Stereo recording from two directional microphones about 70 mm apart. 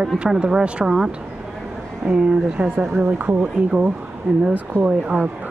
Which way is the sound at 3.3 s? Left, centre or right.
Centre.